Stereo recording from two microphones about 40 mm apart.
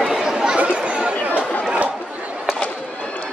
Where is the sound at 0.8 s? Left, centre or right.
Right.